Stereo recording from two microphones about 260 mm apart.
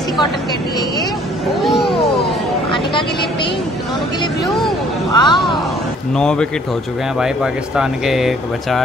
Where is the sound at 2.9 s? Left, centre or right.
Centre.